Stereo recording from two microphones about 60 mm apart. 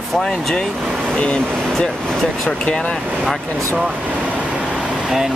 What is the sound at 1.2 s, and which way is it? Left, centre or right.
Speech, centre.